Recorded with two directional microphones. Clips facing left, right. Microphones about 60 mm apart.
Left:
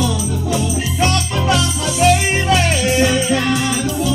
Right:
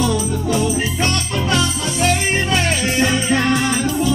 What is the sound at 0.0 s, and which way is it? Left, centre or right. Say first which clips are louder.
Music: right 1 dB; right.